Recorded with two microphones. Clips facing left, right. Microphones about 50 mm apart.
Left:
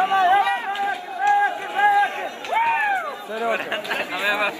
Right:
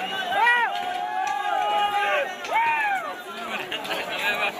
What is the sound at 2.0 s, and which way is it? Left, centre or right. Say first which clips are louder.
Run: left 2 dB; right.